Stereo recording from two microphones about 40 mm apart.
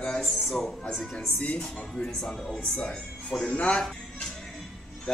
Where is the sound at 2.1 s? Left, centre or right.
Centre.